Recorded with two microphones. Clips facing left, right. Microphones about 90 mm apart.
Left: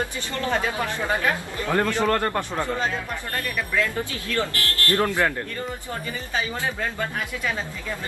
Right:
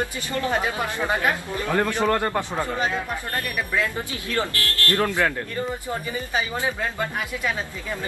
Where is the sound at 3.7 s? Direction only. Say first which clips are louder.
Left 1 dB; 20° right (ahead or behind).